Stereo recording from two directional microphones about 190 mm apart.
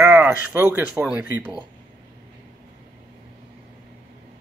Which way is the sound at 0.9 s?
5° right (ahead or behind).